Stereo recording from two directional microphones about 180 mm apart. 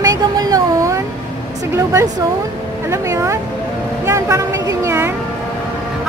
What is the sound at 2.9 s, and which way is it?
Speech, 15° right (ahead or behind).